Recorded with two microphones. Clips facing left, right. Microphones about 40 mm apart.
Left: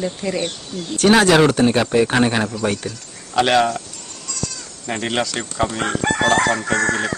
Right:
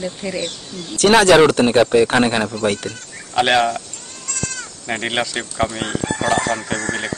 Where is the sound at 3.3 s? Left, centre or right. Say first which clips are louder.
Even; centre.